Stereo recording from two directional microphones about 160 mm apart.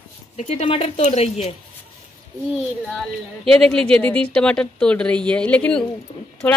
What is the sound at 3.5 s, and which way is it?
Speech, 5° left (ahead or behind).